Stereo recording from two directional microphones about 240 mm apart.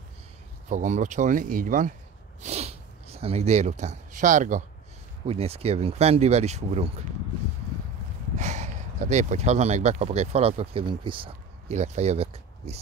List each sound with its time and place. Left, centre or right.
0.7 s speech: right
8.4 s speech: right